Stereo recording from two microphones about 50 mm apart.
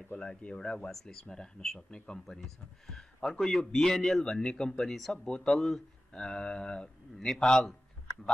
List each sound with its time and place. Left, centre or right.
0.2 s speech: centre
5.2 s speech: centre